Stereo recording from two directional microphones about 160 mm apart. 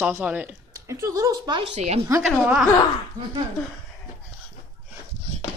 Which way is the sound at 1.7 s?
40° right (ahead or behind).